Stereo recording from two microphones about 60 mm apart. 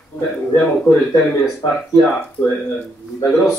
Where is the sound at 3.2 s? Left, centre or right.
Centre.